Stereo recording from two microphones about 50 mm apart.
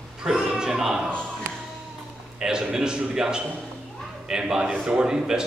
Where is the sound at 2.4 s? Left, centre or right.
Centre.